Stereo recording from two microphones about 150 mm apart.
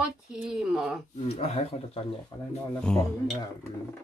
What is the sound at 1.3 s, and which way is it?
Speech, 45° left (ahead or behind).